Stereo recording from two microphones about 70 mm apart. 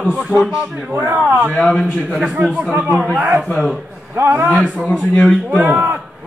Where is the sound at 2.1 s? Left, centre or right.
Centre.